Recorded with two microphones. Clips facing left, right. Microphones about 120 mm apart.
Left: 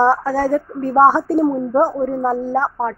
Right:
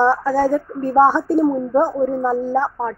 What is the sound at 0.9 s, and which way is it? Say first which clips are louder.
Speech: left 1 dB; 40° left (ahead or behind).